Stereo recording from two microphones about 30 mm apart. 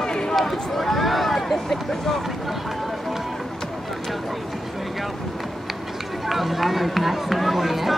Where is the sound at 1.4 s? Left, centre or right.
Centre.